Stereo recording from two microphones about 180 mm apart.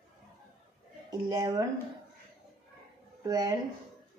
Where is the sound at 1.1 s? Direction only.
20° right (ahead or behind).